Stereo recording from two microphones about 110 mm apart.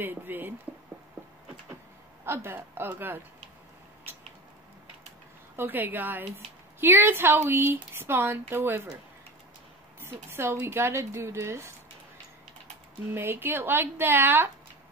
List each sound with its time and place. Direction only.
0.0 s speech: 15° right (ahead or behind)
2.2 s a woman's voice: 20° right (ahead or behind)
5.6 s a woman's voice: 20° right (ahead or behind)
10.0 s a woman's voice: 20° right (ahead or behind)
13.1 s a woman's voice: 20° right (ahead or behind)